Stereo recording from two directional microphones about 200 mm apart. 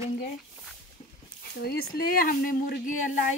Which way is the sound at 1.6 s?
50° left (ahead or behind).